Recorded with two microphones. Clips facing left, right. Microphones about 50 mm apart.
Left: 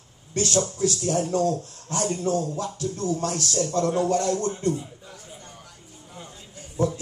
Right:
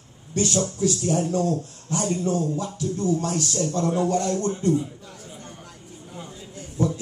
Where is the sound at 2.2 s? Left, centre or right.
Right.